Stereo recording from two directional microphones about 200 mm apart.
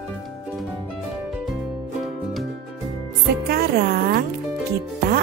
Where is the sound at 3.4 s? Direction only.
50° right (ahead or behind).